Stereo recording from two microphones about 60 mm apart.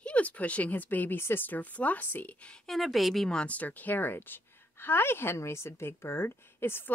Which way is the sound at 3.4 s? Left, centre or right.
Left.